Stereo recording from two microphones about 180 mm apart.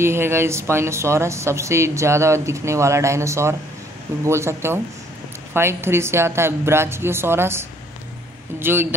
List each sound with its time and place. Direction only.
0.0 s speech: 15° right (ahead or behind)